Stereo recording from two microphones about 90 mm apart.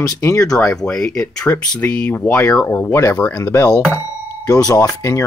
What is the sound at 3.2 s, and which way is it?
Speech, 35° left (ahead or behind).